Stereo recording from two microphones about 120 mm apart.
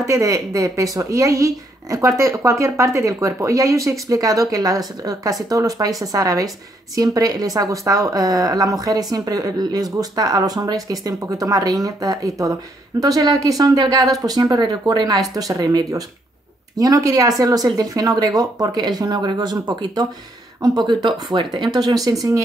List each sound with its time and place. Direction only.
0.0 s a woman's voice: 25° right (ahead or behind)
20.6 s a woman's voice: 35° right (ahead or behind)